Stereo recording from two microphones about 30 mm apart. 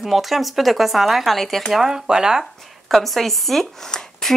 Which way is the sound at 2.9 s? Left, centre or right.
Centre.